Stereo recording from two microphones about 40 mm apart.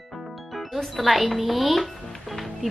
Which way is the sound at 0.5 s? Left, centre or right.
Centre.